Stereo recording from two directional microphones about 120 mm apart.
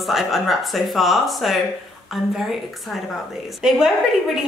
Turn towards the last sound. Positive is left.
turn(degrees=-5)  # may be behind; listen again after turning